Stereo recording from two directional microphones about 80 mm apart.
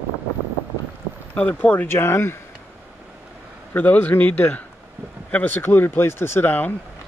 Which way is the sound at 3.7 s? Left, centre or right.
Centre.